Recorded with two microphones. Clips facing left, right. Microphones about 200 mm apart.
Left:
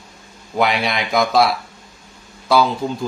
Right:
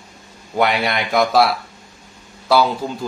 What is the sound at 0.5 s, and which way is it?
Speech, centre (ahead or behind).